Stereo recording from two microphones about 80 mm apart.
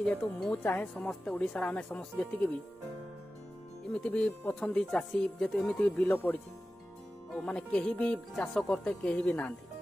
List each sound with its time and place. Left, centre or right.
0.0 s speech: centre
3.9 s speech: centre
5.8 s speech: left
7.4 s speech: centre